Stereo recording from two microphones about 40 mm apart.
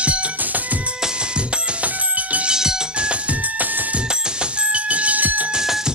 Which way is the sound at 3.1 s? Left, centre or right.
Right.